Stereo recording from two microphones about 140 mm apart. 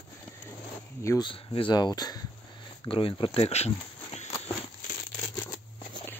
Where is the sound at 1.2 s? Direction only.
35° left (ahead or behind).